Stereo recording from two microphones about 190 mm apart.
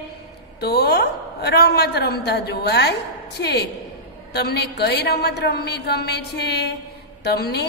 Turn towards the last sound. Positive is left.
turn(degrees=55)  # may be behind; listen again after turning